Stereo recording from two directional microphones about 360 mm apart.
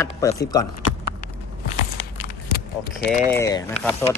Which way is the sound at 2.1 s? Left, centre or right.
Left.